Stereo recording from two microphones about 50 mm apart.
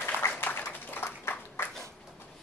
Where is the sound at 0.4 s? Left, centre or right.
Left.